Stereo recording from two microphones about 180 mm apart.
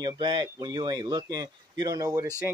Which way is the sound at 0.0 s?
25° right (ahead or behind).